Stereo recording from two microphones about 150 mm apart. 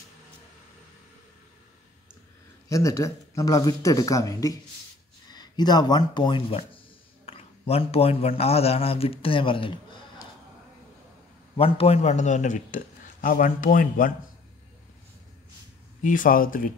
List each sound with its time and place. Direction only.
2.7 s a man's voice: 20° left (ahead or behind)
11.5 s a man's voice: 40° left (ahead or behind); by 14.1 s 65° left (ahead or behind)
16.0 s speech: 60° left (ahead or behind)